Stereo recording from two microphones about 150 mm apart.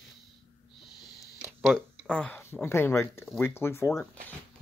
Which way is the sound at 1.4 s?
10° right (ahead or behind).